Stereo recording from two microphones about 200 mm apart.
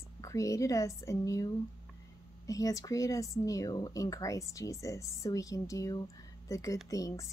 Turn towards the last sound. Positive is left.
turn(degrees=15)  # may be behind; listen again after turning